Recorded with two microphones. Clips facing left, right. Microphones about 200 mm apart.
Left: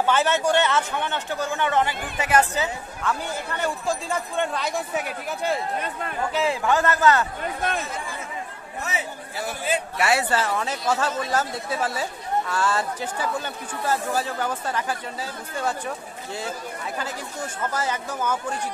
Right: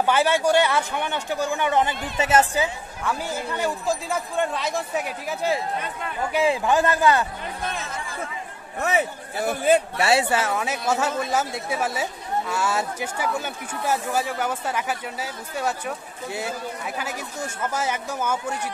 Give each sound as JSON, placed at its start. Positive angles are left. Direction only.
{"t": 0.0, "sound": "a woman's voice", "side_deg": -10}
{"t": 2.5, "sound": "a woman's voice", "side_deg": -10}
{"t": 6.3, "sound": "a woman's voice", "side_deg": -15}
{"t": 8.8, "sound": "a man's voice", "side_deg": -55}
{"t": 9.9, "sound": "speech", "side_deg": -30}
{"t": 10.3, "sound": "a woman's voice", "side_deg": -10}
{"t": 17.0, "sound": "a woman's voice", "side_deg": -10}